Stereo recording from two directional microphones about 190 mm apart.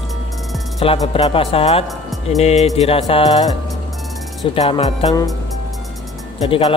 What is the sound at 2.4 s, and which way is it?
Speech, 35° left (ahead or behind).